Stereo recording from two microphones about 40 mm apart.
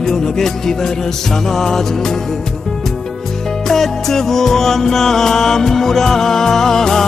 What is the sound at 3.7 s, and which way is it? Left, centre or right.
Music, centre.